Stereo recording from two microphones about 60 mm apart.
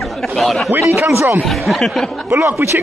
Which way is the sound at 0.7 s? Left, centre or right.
Right.